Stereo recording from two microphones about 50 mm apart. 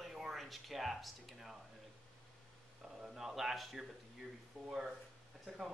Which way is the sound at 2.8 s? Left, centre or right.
Centre.